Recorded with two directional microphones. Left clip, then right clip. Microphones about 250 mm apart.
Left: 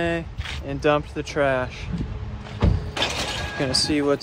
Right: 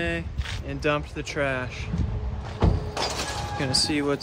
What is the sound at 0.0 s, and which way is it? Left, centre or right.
Speech, centre.